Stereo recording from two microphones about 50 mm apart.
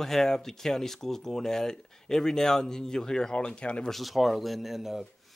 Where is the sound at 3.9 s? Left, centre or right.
Centre.